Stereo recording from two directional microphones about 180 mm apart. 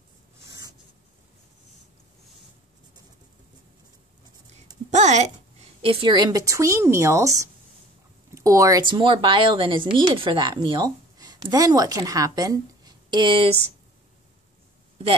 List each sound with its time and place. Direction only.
0.5 s writing: 20° right (ahead or behind)
4.9 s a sound: 40° right (ahead or behind)
5.8 s speech: 30° right (ahead or behind)